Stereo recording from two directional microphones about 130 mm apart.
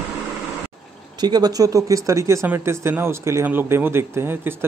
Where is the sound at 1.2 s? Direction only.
30° right (ahead or behind).